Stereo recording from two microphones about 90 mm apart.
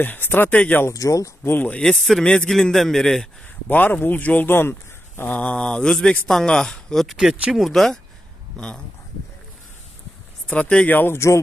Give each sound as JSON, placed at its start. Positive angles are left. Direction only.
{"t": 0.0, "sound": "speech", "side_deg": 20}
{"t": 0.9, "sound": "speech", "side_deg": 40}
{"t": 1.4, "sound": "speech", "side_deg": 20}
{"t": 1.8, "sound": "a man's voice", "side_deg": 5}
{"t": 3.6, "sound": "a man's voice", "side_deg": 20}
{"t": 7.2, "sound": "a man's voice", "side_deg": -10}
{"t": 10.4, "sound": "speech", "side_deg": 15}